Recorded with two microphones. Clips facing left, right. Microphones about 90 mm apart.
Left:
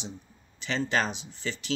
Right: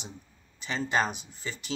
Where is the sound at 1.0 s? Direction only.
45° right (ahead or behind).